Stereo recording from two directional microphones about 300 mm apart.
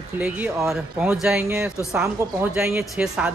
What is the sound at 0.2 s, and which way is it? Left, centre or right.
Speech, centre.